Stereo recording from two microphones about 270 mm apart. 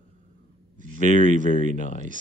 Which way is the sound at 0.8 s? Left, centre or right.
Right.